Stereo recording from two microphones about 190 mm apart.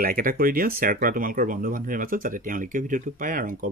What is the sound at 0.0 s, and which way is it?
Speech, 50° right (ahead or behind).